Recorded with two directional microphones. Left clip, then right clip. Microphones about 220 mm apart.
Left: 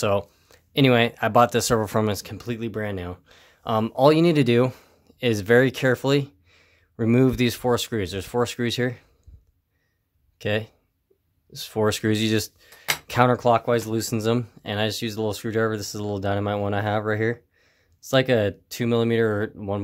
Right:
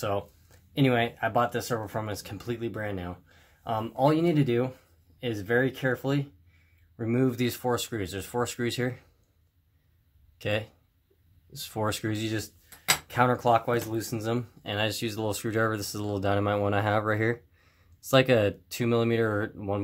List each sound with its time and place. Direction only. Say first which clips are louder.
0.0 s speech: left 7 dB; 45° left (ahead or behind); by 9.0 s 30° left (ahead or behind)
10.4 s speech: left 4 dB; 25° left (ahead or behind)